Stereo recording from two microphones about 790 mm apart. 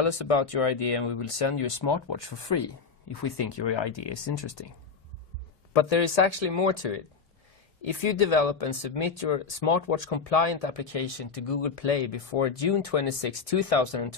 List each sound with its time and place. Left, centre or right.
0.1 s speech: left
5.7 s speech: left